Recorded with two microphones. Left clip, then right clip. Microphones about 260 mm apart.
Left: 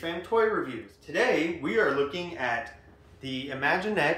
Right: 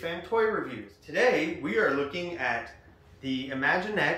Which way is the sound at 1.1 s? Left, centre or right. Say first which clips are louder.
Right 1 dB; left.